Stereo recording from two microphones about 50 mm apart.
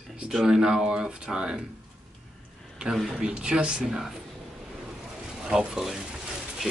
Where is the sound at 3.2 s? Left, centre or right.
Centre.